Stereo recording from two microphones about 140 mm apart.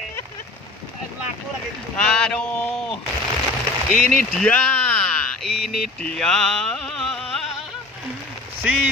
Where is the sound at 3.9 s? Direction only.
5° left (ahead or behind).